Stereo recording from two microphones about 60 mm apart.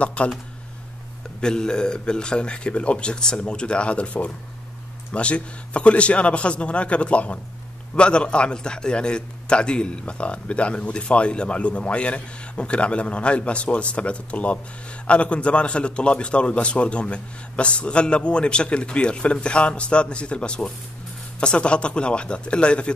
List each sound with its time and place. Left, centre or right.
0.0 s a man's voice: left
1.4 s a man's voice: centre